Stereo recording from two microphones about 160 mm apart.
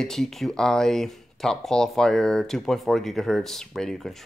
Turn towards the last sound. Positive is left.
turn(degrees=0)  # may be behind; listen again after turning